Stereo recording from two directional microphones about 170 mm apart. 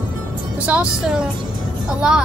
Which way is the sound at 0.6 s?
5° right (ahead or behind).